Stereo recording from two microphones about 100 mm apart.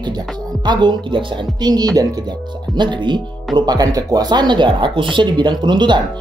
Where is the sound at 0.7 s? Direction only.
50° right (ahead or behind).